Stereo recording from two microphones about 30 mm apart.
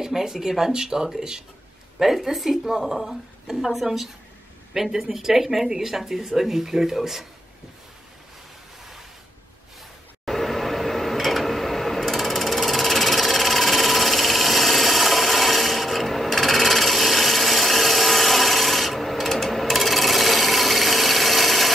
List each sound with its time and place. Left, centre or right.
0.0 s speech: centre
2.2 s a woman's voice: centre
10.2 s a sound: centre
11.1 s sewing machine: centre